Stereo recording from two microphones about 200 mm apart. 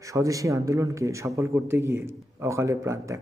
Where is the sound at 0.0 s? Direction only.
15° right (ahead or behind).